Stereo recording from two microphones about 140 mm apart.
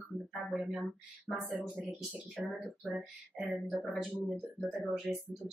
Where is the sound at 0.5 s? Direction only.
5° right (ahead or behind).